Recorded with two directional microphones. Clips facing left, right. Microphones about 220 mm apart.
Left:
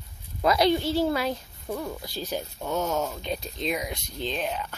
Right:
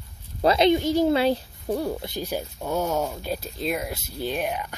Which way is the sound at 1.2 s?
30° right (ahead or behind).